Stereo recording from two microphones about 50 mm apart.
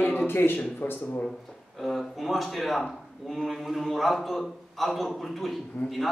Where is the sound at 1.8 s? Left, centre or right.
Centre.